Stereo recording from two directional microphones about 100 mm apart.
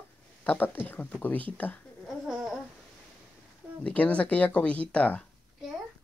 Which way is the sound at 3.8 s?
15° left (ahead or behind).